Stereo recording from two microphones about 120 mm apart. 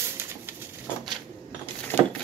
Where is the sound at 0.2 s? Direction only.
20° right (ahead or behind).